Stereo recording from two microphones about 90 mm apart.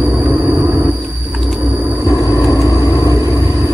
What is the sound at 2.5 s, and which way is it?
Vehicle, 40° left (ahead or behind).